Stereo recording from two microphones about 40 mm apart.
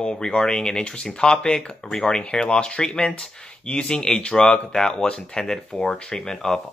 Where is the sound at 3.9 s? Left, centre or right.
Centre.